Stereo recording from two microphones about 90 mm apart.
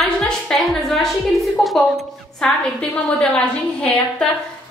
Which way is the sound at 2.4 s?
10° left (ahead or behind).